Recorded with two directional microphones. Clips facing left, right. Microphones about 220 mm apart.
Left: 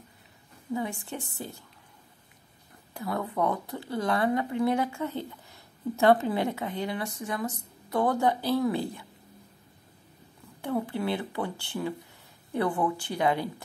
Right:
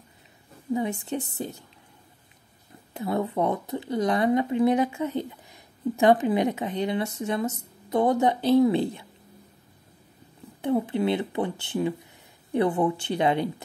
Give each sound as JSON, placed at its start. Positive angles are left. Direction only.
{"t": 0.7, "sound": "speech", "side_deg": -20}
{"t": 2.9, "sound": "speech", "side_deg": -25}
{"t": 10.6, "sound": "speech", "side_deg": -20}